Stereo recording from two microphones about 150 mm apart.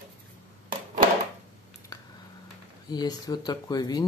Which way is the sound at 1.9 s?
25° left (ahead or behind).